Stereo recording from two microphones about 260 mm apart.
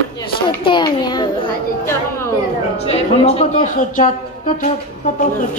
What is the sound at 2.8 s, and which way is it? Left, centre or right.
Speech, left.